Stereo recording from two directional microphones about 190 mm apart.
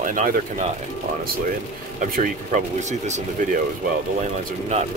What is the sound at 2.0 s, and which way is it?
Speech, 40° right (ahead or behind).